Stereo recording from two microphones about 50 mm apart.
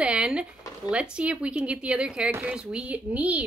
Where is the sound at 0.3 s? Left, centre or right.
Centre.